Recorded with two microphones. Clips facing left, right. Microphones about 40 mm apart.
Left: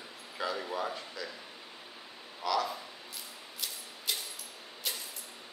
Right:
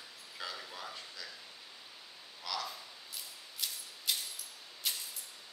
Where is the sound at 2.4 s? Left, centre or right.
Centre.